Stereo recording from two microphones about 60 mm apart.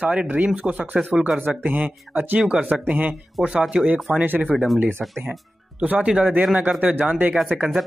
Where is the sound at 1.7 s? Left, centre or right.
Right.